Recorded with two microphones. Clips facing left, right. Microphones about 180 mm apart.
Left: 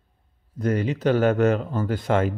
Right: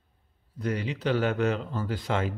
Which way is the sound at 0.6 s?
45° left (ahead or behind).